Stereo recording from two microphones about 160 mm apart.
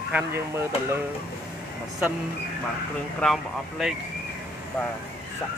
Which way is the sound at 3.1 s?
Centre (ahead or behind).